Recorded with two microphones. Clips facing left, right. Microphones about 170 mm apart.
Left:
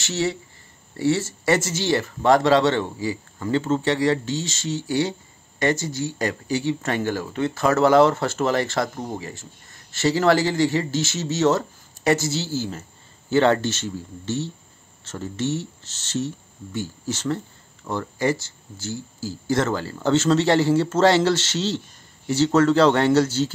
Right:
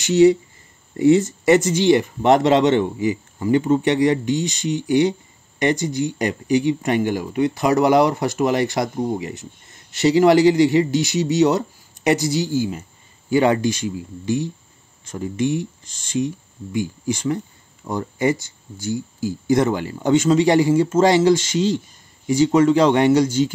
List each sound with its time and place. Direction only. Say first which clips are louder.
0.0 s speech: right 12 dB; 15° right (ahead or behind)